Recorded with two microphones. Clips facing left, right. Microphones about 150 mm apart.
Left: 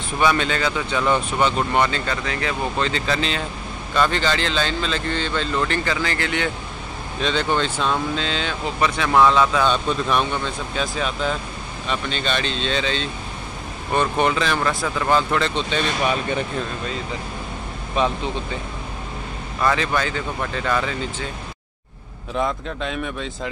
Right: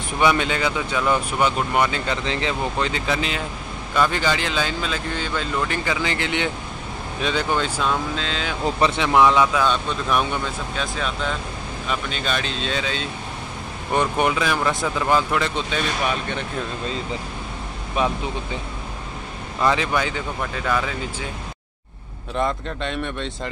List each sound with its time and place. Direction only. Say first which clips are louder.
0.2 s speech: even; 15° right (ahead or behind)
2.2 s speech: right 1 dB; 25° right (ahead or behind)
2.8 s speech: left 2 dB; 10° right (ahead or behind)
8.8 s speech: even; 20° right (ahead or behind)
14.7 s speech: even; 20° right (ahead or behind)
15.0 s speech: left 1 dB; 10° right (ahead or behind)
17.9 s speech: left 1 dB; 10° right (ahead or behind)
19.6 s speech: even; 15° right (ahead or behind)
22.4 s speech: even; centre (ahead or behind)